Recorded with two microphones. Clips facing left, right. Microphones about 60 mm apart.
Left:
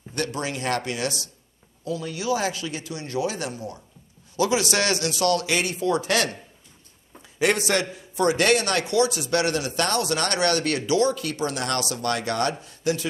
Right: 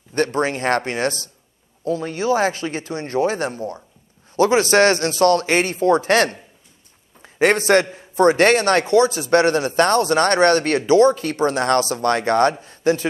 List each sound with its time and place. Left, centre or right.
0.1 s a man's voice: right
7.2 s a sound: right
7.8 s a man's voice: right